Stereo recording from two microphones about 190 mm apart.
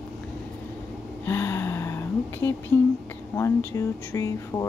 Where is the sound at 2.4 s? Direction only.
15° left (ahead or behind).